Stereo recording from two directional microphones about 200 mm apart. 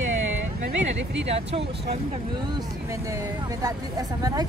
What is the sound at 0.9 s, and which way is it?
Speech, 65° right (ahead or behind).